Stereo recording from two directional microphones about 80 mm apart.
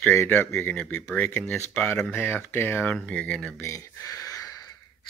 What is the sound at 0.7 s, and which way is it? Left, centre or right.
Speech, centre.